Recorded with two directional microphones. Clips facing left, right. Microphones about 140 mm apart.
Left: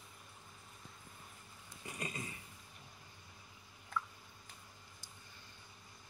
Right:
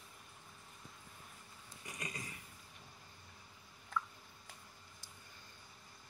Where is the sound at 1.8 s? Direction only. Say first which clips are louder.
Left 3 dB; 30° left (ahead or behind).